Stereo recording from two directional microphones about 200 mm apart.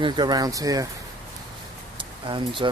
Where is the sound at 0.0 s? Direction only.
20° right (ahead or behind).